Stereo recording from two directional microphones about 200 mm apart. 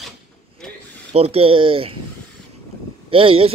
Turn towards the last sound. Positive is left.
turn(degrees=-25)  # may be behind; listen again after turning